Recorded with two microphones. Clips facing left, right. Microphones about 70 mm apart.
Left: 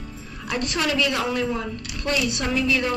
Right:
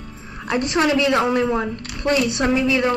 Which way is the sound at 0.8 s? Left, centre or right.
Right.